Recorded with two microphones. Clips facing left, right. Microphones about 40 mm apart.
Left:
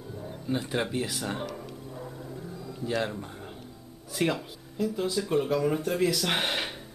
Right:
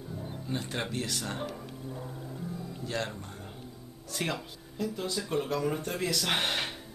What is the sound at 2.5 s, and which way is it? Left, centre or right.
Music, right.